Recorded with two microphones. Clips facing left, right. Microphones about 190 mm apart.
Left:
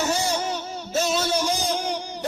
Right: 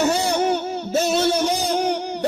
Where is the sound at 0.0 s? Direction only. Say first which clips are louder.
Right 5 dB; 60° right (ahead or behind).